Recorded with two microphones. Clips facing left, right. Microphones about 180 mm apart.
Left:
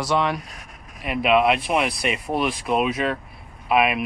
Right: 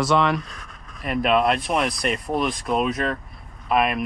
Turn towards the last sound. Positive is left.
turn(degrees=5)  # may be behind; listen again after turning